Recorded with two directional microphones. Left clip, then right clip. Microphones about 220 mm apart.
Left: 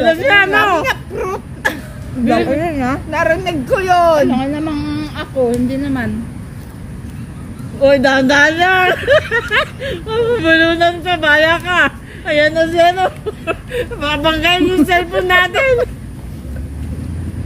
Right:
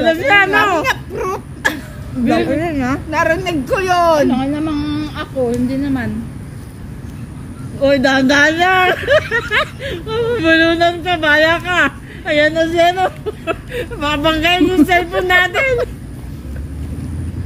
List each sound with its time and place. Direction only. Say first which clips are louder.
0.0 s speech: left 1 dB; 5° left (ahead or behind)
0.8 s a sound: even; 15° right (ahead or behind)
2.2 s speech: left 1 dB; 5° left (ahead or behind)
3.1 s speech: even; 15° right (ahead or behind)
4.3 s a woman's voice: even; 20° left (ahead or behind)
7.8 s a woman's voice: left 2 dB; 5° left (ahead or behind)